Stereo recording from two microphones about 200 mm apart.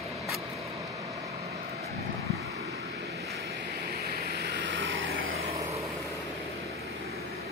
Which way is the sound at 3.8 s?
50° right (ahead or behind).